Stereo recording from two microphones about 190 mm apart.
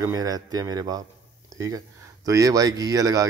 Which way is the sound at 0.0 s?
20° right (ahead or behind).